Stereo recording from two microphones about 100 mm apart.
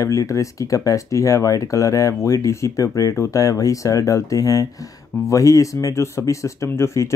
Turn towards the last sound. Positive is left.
turn(degrees=30)  # may be behind; listen again after turning